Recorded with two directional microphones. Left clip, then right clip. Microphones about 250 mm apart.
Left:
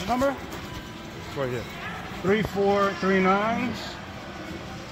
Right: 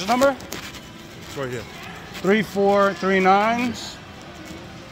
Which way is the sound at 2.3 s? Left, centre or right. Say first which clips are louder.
Right 5 dB; right.